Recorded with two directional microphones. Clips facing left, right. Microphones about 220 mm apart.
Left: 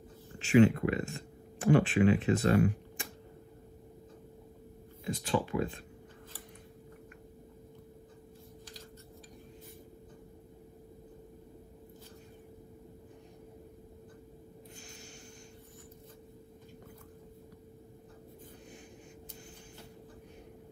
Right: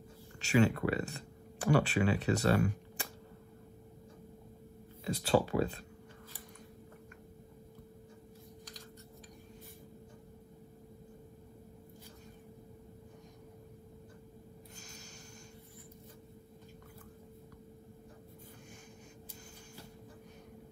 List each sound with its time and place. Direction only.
0.4 s speech: 40° right (ahead or behind)
5.1 s speech: 40° right (ahead or behind)